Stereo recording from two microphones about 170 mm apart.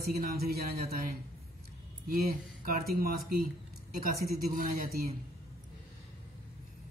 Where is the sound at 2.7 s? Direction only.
60° right (ahead or behind).